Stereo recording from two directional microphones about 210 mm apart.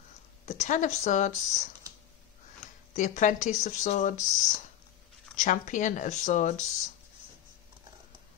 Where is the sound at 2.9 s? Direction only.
35° left (ahead or behind).